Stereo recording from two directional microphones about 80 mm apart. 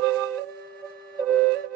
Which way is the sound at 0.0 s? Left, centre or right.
Left.